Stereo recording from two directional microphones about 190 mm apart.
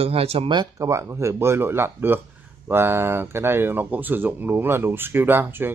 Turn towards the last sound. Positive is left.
turn(degrees=-10)  # may be behind; listen again after turning